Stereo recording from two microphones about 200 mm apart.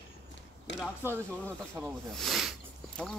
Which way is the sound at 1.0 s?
10° right (ahead or behind).